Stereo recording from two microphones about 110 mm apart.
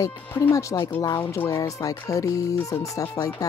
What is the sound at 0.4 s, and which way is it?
Music, 30° left (ahead or behind).